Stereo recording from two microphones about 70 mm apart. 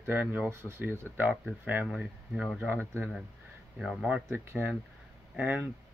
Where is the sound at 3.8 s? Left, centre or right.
Centre.